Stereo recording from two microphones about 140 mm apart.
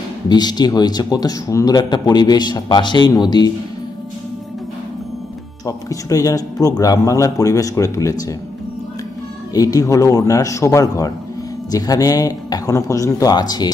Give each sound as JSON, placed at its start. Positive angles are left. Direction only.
{"t": 0.3, "sound": "speech", "side_deg": 30}
{"t": 5.7, "sound": "speech", "side_deg": 25}
{"t": 9.5, "sound": "speech", "side_deg": 25}